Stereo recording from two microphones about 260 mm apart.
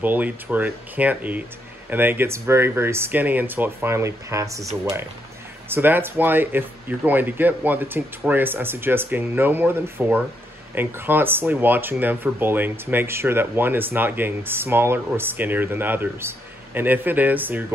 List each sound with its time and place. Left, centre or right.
0.0 s speech: centre
5.7 s speech: centre